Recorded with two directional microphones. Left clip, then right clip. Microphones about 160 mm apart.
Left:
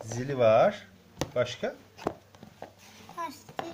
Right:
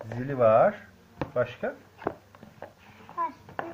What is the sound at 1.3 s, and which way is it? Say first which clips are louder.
Speech: right 1 dB; 45° left (ahead or behind).